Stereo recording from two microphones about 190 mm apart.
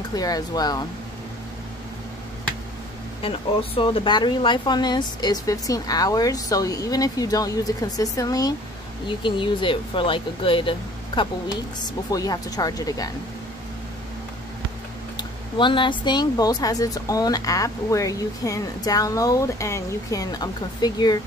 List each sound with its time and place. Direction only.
0.1 s speech: 20° left (ahead or behind)
3.2 s speech: 30° left (ahead or behind)
15.1 s speech: 25° left (ahead or behind)